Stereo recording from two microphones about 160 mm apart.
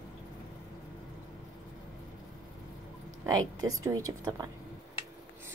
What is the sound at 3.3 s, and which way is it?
A woman's voice, 25° right (ahead or behind).